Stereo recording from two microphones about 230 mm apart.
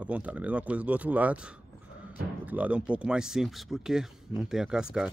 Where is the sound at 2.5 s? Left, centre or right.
Centre.